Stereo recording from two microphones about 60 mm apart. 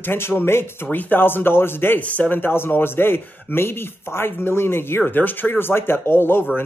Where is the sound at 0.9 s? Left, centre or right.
Left.